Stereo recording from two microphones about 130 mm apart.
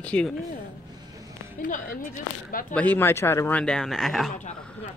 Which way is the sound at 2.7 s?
15° left (ahead or behind).